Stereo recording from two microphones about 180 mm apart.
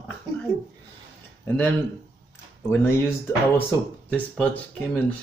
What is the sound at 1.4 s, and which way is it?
Speech, 10° left (ahead or behind).